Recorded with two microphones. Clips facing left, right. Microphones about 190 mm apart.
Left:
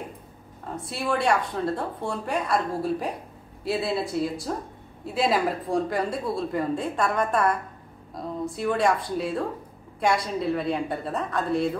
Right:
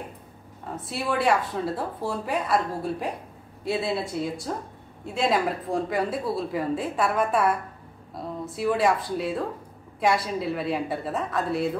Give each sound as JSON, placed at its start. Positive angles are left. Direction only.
{"t": 0.7, "sound": "speech", "side_deg": 0}